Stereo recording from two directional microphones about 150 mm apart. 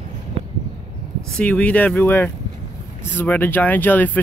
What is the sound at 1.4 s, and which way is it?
Speech, 10° left (ahead or behind).